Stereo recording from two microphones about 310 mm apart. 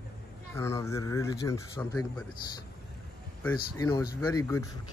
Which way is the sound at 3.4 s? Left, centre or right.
Centre.